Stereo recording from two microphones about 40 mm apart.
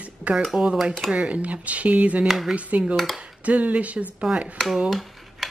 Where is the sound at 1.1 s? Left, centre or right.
Right.